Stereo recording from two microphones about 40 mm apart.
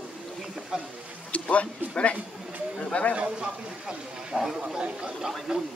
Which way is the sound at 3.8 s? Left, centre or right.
Centre.